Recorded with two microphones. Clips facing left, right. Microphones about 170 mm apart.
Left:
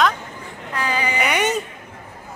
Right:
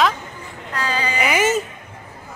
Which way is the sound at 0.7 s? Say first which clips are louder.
Even; 15° left (ahead or behind).